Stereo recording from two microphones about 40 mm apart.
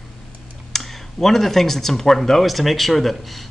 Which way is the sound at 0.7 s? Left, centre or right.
Centre.